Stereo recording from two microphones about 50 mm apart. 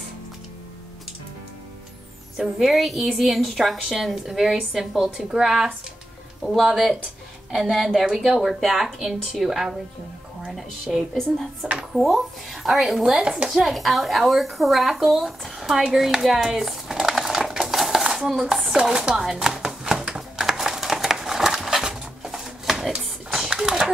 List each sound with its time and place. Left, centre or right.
2.6 s speech: centre
13.0 s speech: centre
13.5 s speech: centre
17.5 s dishes: centre
18.8 s a sound: centre